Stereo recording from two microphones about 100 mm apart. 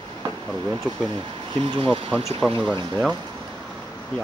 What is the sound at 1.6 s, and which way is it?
Speech, 65° right (ahead or behind).